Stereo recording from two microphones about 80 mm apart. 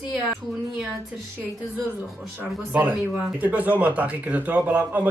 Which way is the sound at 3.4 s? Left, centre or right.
Right.